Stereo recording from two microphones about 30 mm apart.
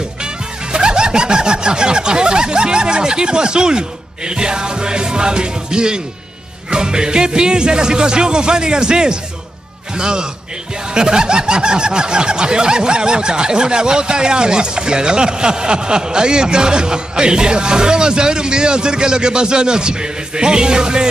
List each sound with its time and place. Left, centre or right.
0.7 s snicker: right